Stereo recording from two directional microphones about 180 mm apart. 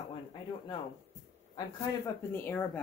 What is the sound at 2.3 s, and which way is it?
Speech, 10° left (ahead or behind).